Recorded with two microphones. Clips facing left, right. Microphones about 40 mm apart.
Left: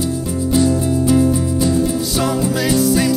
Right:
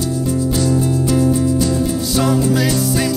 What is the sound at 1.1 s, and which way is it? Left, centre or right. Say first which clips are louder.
Music: even; centre.